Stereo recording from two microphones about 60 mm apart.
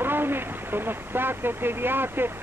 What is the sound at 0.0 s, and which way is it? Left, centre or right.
Speech, right.